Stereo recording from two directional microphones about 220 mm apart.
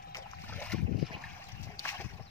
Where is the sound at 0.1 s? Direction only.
10° left (ahead or behind).